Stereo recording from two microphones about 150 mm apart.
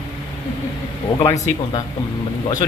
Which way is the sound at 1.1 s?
15° left (ahead or behind).